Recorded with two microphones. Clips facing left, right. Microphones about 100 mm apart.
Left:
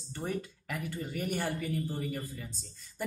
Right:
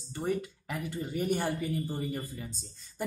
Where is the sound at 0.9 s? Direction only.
25° right (ahead or behind).